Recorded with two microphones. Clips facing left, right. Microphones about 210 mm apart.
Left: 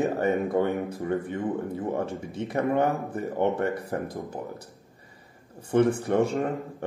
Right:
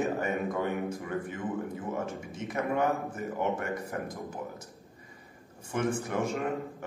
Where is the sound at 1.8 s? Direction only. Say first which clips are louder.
Left 5 dB; 30° left (ahead or behind).